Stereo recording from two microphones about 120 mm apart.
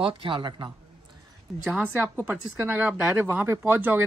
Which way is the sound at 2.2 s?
15° right (ahead or behind).